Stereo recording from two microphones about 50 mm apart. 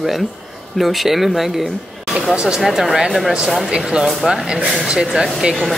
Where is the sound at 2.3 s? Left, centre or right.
Centre.